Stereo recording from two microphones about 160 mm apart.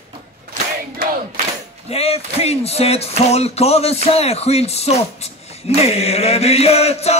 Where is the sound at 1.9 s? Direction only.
40° left (ahead or behind).